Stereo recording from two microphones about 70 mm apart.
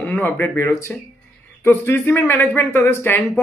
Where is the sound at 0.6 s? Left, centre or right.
Left.